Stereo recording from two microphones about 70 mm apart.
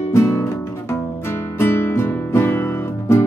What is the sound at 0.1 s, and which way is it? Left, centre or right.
Music, left.